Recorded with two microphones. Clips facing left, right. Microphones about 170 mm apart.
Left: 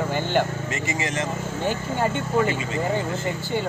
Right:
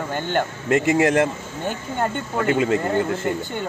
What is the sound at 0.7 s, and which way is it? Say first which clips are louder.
Speech: right 10 dB; 60° right (ahead or behind).